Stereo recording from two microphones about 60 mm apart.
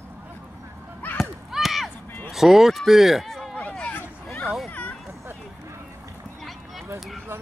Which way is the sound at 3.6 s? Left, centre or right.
Left.